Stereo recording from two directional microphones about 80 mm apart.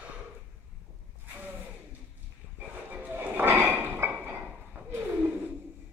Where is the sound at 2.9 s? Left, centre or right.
Right.